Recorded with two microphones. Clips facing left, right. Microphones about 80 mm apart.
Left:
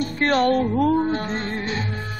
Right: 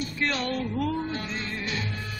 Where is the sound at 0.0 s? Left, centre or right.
Left.